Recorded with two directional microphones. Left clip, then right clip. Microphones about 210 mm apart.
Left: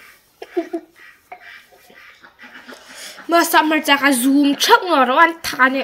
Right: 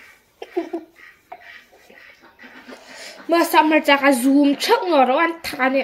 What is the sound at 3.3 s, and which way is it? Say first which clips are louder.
Speech: left 1 dB; 40° left (ahead or behind).